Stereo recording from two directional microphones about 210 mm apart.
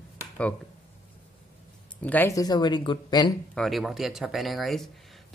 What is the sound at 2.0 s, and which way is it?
Speech, 10° left (ahead or behind).